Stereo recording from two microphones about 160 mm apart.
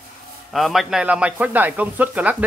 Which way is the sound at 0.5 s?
Centre (ahead or behind).